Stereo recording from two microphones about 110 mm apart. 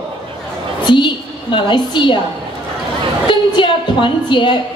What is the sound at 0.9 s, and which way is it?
A woman's voice, 45° left (ahead or behind).